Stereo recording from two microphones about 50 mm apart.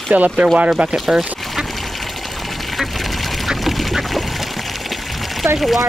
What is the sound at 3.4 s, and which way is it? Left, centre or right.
Duck, centre.